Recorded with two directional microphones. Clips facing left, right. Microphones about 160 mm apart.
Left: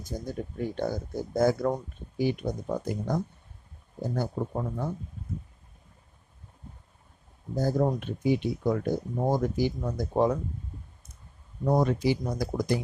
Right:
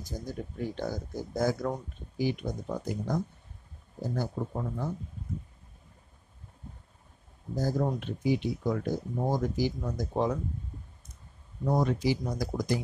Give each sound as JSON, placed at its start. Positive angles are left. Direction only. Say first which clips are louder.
{"t": 0.3, "sound": "speech", "louder": "left 2 dB", "side_deg": 55}
{"t": 4.0, "sound": "speech", "louder": "left 2 dB", "side_deg": 45}
{"t": 7.5, "sound": "speech", "louder": "left 3 dB", "side_deg": 55}
{"t": 11.6, "sound": "speech", "louder": "left 3 dB", "side_deg": 55}